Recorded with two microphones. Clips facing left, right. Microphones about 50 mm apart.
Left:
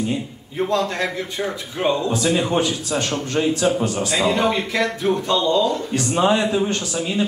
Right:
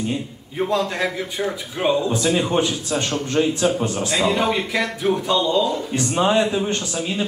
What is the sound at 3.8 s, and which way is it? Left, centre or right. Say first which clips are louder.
Speech: left 1 dB; right.